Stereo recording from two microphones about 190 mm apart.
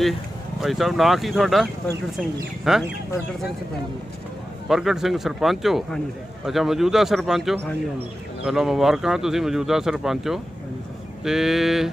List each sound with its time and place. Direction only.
0.6 s speech: centre (ahead or behind)
4.6 s speech: centre (ahead or behind)